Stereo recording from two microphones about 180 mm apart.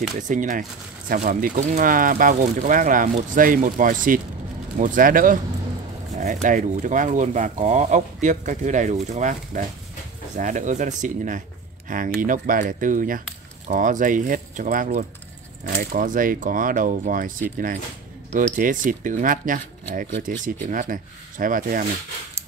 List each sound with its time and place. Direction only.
0.3 s speech: 45° right (ahead or behind)